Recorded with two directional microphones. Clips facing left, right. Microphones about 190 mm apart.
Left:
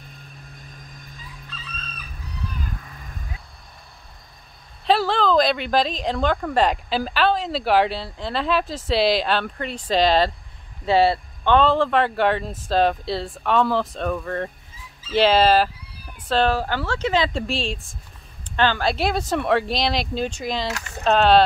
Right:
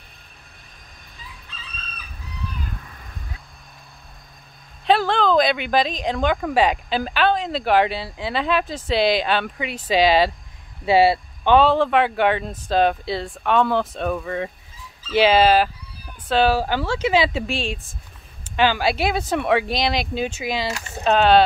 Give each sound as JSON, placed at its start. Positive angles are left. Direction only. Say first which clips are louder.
{"t": 4.8, "sound": "a woman's voice", "louder": "right 1 dB", "side_deg": 0}